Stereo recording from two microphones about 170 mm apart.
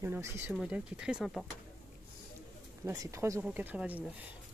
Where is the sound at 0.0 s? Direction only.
15° right (ahead or behind).